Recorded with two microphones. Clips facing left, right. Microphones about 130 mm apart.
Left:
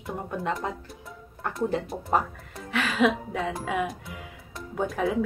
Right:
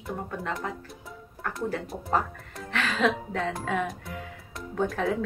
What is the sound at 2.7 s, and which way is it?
Speech, 10° left (ahead or behind).